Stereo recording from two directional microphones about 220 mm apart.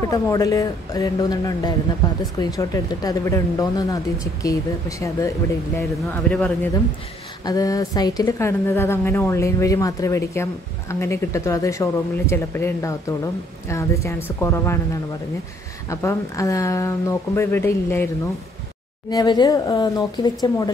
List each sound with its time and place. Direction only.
0.1 s a woman's voice: 15° left (ahead or behind)
6.3 s speech: 5° left (ahead or behind)
7.4 s a woman's voice: 15° left (ahead or behind)
15.9 s a woman's voice: 15° left (ahead or behind)